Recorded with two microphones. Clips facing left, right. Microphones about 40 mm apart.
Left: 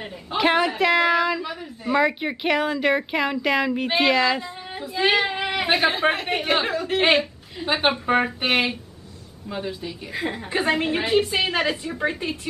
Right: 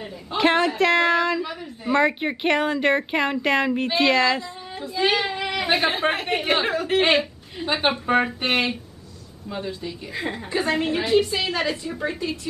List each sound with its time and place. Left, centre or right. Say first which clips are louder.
0.4 s a woman's voice: right 1 dB; centre
3.8 s a woman's voice: left 1 dB; centre
5.3 s a sound: left 1 dB; left
5.7 s a woman's voice: left 1 dB; centre
10.5 s a woman's voice: left 1 dB; left